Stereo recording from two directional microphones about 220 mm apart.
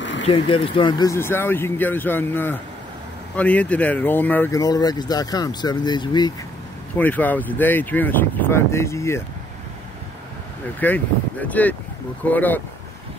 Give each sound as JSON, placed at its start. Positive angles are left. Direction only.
{"t": 0.0, "sound": "a sound", "side_deg": 55}
{"t": 0.3, "sound": "speech", "side_deg": 25}
{"t": 7.0, "sound": "speech", "side_deg": 10}
{"t": 10.8, "sound": "speech", "side_deg": 10}